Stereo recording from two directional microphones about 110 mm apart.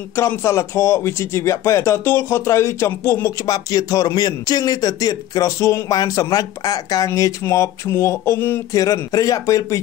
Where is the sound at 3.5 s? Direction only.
35° left (ahead or behind).